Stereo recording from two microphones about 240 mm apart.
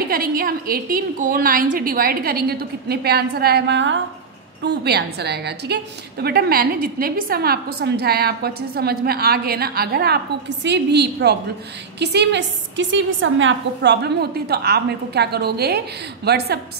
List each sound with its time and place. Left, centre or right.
0.1 s a woman's voice: right